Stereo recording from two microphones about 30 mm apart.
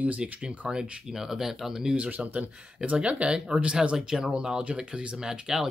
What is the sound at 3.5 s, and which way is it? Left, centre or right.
Speech, right.